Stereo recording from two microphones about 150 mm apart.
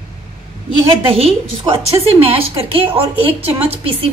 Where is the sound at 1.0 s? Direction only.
40° right (ahead or behind).